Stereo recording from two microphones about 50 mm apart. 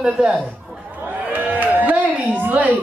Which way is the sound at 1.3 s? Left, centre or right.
Right.